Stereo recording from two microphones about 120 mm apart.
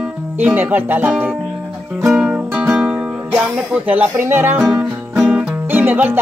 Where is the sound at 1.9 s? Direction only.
5° right (ahead or behind).